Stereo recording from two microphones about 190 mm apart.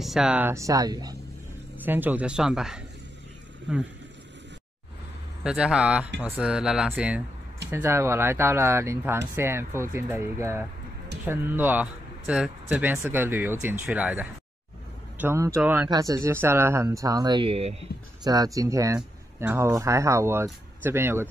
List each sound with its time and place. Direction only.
0.0 s speech: centre (ahead or behind)
5.4 s speech: 5° right (ahead or behind); by 17.8 s 30° right (ahead or behind)
18.2 s speech: 20° right (ahead or behind)